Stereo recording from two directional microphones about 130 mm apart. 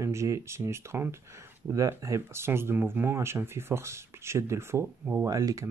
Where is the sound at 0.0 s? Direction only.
20° right (ahead or behind).